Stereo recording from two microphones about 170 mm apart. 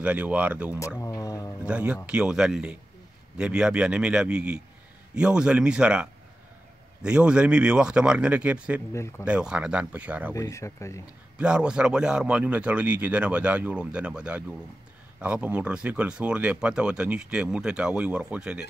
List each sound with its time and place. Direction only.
0.0 s a man's voice: 10° right (ahead or behind)
0.7 s a sound: 20° left (ahead or behind)
1.6 s a man's voice: 5° right (ahead or behind)
10.3 s speech: 20° left (ahead or behind)
11.3 s a man's voice: 5° right (ahead or behind)